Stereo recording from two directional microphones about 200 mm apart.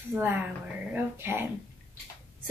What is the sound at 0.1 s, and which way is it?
Speech, 10° right (ahead or behind).